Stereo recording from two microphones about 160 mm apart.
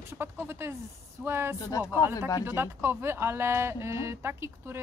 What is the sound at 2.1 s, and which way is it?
Speech, 20° left (ahead or behind).